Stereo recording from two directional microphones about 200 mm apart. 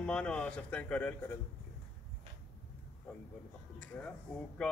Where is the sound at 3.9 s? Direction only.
5° left (ahead or behind).